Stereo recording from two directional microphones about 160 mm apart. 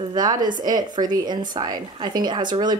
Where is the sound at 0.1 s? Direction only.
25° right (ahead or behind).